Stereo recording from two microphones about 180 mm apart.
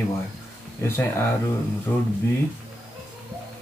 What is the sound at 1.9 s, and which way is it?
Speech, 10° left (ahead or behind).